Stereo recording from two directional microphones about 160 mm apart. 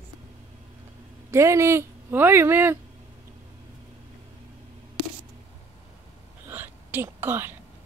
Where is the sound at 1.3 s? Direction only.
20° right (ahead or behind).